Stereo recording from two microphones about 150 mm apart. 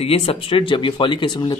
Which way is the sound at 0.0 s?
40° left (ahead or behind).